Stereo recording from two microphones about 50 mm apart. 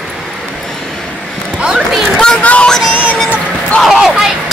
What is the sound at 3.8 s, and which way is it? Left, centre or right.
Speech, centre.